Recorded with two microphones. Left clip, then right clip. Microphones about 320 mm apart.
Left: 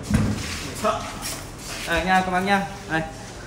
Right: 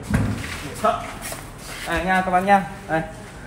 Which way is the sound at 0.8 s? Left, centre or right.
Centre.